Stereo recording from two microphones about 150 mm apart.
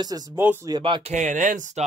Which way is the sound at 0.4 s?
15° right (ahead or behind).